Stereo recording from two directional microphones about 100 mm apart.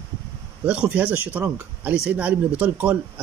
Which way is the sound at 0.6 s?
15° right (ahead or behind).